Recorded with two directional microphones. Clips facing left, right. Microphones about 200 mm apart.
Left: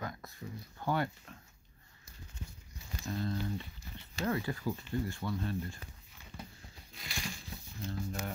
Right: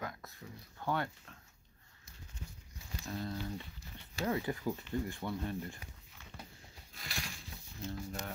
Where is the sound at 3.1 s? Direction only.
Centre (ahead or behind).